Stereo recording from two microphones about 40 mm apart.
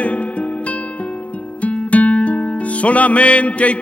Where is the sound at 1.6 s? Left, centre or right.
Left.